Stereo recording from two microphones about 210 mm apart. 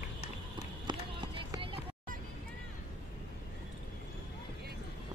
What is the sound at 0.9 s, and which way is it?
Run, 20° right (ahead or behind).